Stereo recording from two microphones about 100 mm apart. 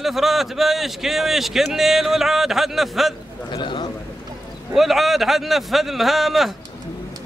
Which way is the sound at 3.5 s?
50° left (ahead or behind).